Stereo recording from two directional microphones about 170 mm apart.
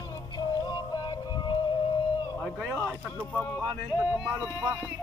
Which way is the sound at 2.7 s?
10° left (ahead or behind).